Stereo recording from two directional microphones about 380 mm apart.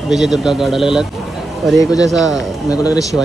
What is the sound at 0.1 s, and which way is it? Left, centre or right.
A man's voice, centre.